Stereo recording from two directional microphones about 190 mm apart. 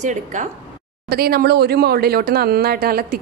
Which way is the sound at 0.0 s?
40° right (ahead or behind).